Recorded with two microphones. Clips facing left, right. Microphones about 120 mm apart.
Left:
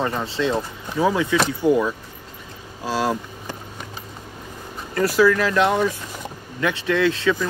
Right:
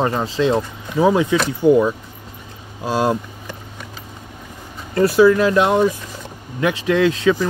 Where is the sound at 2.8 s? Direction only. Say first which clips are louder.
Right 4 dB; 20° right (ahead or behind).